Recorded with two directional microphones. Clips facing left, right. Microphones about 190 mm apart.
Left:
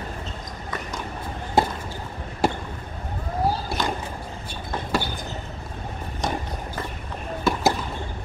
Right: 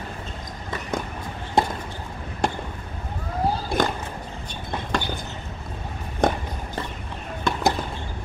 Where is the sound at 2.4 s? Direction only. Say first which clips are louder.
Left 2 dB; 5° left (ahead or behind).